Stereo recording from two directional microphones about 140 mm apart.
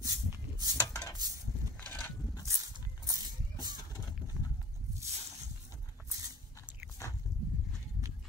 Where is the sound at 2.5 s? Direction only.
25° right (ahead or behind).